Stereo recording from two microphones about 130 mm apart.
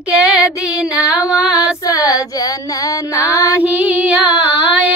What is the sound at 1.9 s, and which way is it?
Child singing, 25° left (ahead or behind).